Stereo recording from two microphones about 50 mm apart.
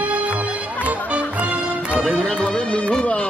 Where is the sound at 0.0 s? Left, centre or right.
Right.